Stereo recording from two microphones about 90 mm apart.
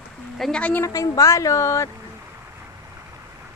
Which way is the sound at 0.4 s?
10° left (ahead or behind).